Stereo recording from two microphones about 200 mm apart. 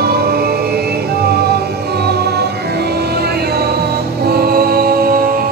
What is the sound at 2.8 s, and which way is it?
Music, 55° right (ahead or behind).